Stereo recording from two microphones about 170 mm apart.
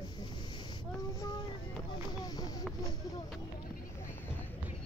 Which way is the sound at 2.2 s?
20° left (ahead or behind).